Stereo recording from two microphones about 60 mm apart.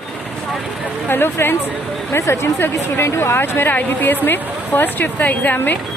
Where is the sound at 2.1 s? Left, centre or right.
Left.